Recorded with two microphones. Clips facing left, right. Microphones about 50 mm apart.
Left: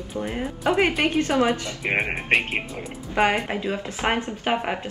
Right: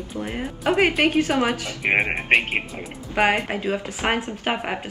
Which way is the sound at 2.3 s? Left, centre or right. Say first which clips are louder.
Right 2 dB; centre.